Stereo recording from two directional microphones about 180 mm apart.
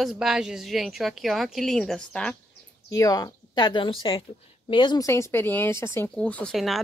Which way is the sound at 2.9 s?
20° left (ahead or behind).